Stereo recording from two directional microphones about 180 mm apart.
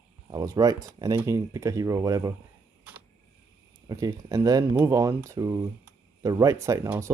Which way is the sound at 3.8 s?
20° right (ahead or behind).